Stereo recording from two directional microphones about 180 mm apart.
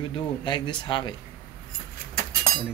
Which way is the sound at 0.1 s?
25° left (ahead or behind).